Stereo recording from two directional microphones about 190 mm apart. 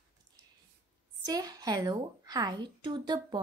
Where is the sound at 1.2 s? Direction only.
20° right (ahead or behind).